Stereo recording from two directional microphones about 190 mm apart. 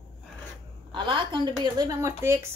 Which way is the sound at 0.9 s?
25° right (ahead or behind).